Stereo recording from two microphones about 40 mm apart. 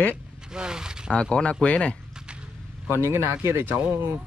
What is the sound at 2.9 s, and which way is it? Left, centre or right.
Speech, right.